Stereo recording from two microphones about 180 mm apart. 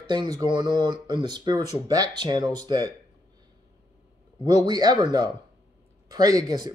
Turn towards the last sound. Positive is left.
turn(degrees=-20)  # may be behind; listen again after turning